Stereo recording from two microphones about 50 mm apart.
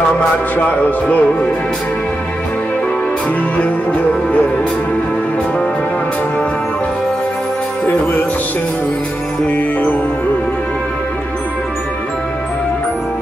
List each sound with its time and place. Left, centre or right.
0.6 s music: left
3.6 s music: left
9.5 s music: left